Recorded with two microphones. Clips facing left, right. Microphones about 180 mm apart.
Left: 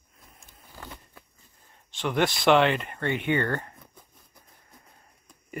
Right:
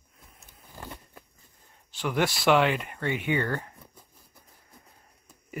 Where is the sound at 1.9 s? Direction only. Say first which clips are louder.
Left 2 dB; 5° right (ahead or behind).